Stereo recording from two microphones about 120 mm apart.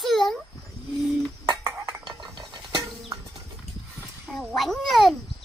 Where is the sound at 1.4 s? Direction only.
25° right (ahead or behind).